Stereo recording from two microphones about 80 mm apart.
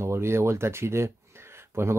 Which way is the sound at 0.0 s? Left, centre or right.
Right.